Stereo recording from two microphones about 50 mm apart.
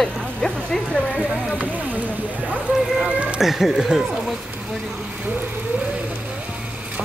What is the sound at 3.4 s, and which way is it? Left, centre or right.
Speech, centre.